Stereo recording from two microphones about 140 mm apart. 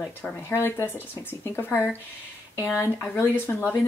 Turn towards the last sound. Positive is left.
turn(degrees=15)  # may be behind; listen again after turning